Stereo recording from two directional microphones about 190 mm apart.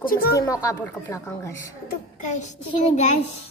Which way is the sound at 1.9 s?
40° left (ahead or behind).